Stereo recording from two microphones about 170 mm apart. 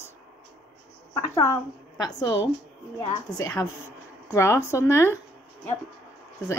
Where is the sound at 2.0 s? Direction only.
25° left (ahead or behind).